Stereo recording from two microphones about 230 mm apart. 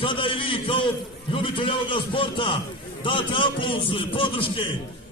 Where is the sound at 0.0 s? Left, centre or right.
Left.